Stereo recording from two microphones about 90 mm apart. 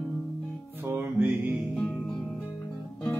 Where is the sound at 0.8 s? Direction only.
25° right (ahead or behind).